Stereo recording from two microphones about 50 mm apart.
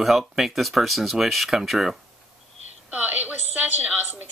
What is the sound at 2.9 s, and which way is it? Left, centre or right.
Speech, right.